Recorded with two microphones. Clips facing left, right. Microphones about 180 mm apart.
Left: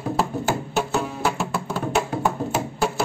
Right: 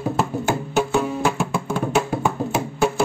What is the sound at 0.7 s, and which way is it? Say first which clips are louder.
Music: right 4 dB; 5° left (ahead or behind).